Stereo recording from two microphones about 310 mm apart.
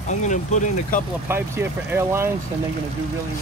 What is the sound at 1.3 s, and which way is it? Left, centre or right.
Speech, centre.